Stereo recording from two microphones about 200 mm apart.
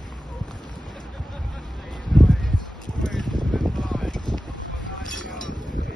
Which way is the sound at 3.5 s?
Centre (ahead or behind).